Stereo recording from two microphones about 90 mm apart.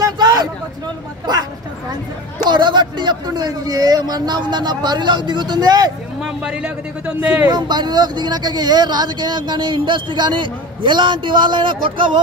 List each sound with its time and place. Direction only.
0.0 s a sound: 45° right (ahead or behind)
2.5 s a man's voice: 55° right (ahead or behind)
6.2 s speech: 10° right (ahead or behind)
7.4 s speech: 55° right (ahead or behind)